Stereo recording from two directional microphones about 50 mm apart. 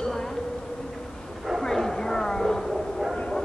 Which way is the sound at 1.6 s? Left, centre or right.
Centre.